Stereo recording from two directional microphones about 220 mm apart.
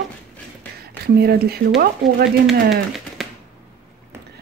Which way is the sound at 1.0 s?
45° right (ahead or behind).